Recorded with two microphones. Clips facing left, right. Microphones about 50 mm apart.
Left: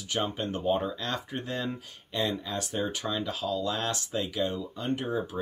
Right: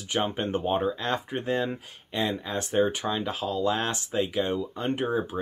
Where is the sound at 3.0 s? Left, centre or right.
Right.